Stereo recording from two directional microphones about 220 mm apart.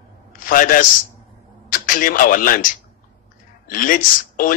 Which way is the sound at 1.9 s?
40° left (ahead or behind).